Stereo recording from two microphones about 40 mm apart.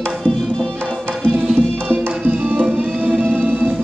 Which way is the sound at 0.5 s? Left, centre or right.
Left.